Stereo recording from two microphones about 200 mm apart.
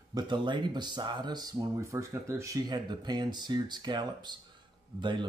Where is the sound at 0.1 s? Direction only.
20° right (ahead or behind).